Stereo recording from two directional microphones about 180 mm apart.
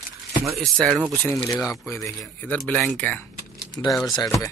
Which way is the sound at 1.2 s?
15° left (ahead or behind).